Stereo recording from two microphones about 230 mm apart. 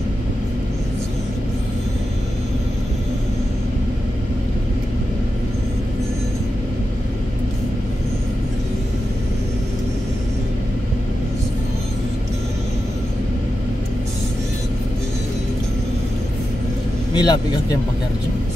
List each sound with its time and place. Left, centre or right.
17.1 s vehicle: centre